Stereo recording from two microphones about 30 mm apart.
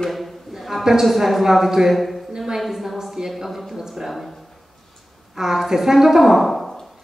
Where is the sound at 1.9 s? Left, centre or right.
Centre.